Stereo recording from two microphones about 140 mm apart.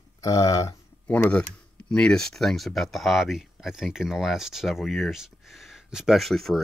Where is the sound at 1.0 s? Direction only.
10° left (ahead or behind).